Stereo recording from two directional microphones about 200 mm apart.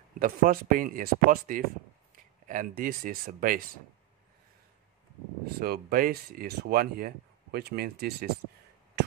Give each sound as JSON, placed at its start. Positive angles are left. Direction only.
{"t": 0.2, "sound": "speech", "side_deg": -45}
{"t": 5.6, "sound": "speech", "side_deg": -50}